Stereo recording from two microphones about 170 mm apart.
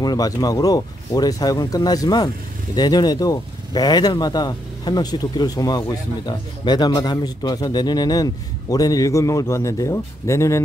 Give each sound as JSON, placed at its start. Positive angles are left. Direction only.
{"t": 0.0, "sound": "speech", "side_deg": 25}